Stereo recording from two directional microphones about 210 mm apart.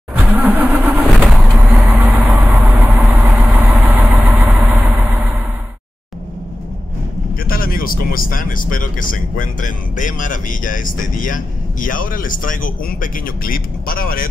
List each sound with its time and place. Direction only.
0.1 s vehicle: 10° right (ahead or behind)
7.4 s speech: 45° left (ahead or behind)